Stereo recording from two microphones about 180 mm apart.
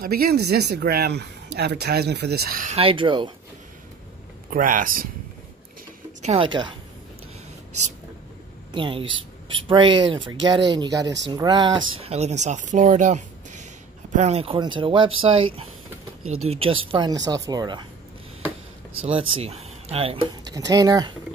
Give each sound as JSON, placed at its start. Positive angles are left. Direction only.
{"t": 0.0, "sound": "speech", "side_deg": -60}
{"t": 2.7, "sound": "speech", "side_deg": -30}
{"t": 4.5, "sound": "speech", "side_deg": -50}
{"t": 6.2, "sound": "speech", "side_deg": -30}
{"t": 8.7, "sound": "speech", "side_deg": -30}
{"t": 9.0, "sound": "speech", "side_deg": -90}
{"t": 9.7, "sound": "speech", "side_deg": -25}
{"t": 11.9, "sound": "speech", "side_deg": -35}
{"t": 16.4, "sound": "speech", "side_deg": -30}
{"t": 18.9, "sound": "speech", "side_deg": -30}